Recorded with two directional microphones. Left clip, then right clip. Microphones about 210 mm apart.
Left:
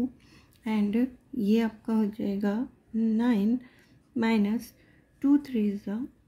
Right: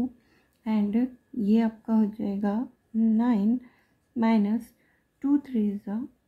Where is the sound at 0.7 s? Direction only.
10° left (ahead or behind).